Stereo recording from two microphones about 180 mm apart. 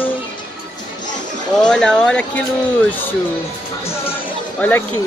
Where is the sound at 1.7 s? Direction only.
5° left (ahead or behind).